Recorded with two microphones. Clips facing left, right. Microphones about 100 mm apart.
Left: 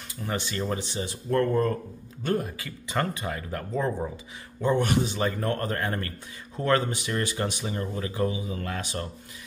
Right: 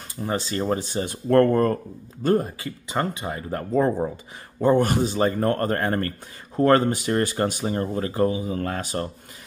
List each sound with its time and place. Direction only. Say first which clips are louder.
0.2 s speech: right 5 dB; 35° right (ahead or behind); by 1.8 s 55° right (ahead or behind)
2.2 s speech: right 6 dB; 35° right (ahead or behind)
2.9 s speech: right 2 dB; 20° right (ahead or behind); by 9.1 s 40° right (ahead or behind)